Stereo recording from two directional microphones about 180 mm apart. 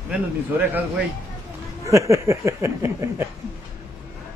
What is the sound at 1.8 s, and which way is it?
Speech, 15° right (ahead or behind).